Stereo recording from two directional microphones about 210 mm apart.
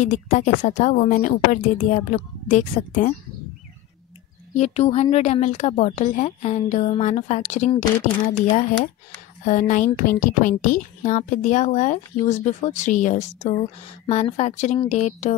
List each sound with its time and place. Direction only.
0.0 s a woman's voice: 35° left (ahead or behind)
4.6 s a woman's voice: 30° left (ahead or behind)
9.4 s a woman's voice: 35° left (ahead or behind)